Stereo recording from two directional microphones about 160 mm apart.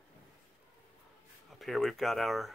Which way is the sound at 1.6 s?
Centre (ahead or behind).